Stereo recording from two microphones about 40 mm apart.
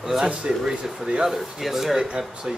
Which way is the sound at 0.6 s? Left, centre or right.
Centre.